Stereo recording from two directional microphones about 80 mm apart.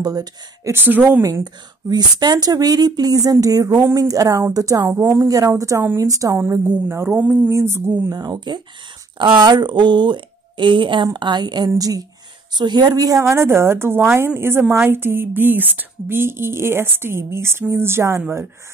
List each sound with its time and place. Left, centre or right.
0.0 s speech: right
0.7 s speech: right
1.4 s speech: right
4.9 s a woman's voice: right
5.3 s speech: right
7.1 s a woman's voice: right
8.1 s speech: right
9.2 s a woman's voice: right
11.1 s speech: right
11.8 s speech: right
12.5 s speech: right
13.2 s a woman's voice: right